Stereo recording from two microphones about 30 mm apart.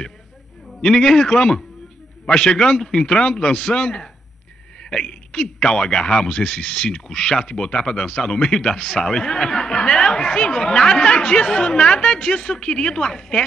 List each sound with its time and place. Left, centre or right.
0.7 s a man's voice: left